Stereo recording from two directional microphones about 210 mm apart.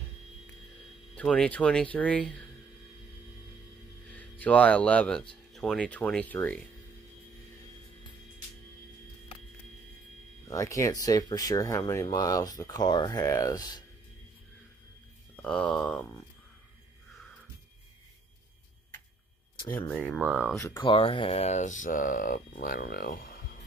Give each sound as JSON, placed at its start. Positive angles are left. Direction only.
{"t": 1.1, "sound": "speech", "side_deg": 5}
{"t": 4.1, "sound": "speech", "side_deg": 5}
{"t": 10.5, "sound": "speech", "side_deg": 15}
{"t": 15.4, "sound": "speech", "side_deg": 5}
{"t": 19.9, "sound": "speech", "side_deg": -5}
{"t": 20.5, "sound": "speech", "side_deg": 20}